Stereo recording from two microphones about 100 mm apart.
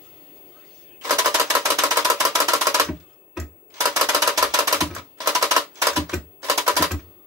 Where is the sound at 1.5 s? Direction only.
30° right (ahead or behind).